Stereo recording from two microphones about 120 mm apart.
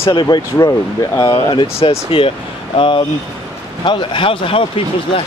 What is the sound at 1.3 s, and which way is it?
Speech, 45° left (ahead or behind).